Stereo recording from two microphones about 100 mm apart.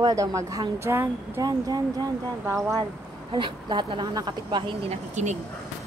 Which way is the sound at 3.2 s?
55° right (ahead or behind).